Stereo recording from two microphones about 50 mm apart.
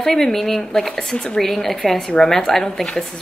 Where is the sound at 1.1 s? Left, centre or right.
Centre.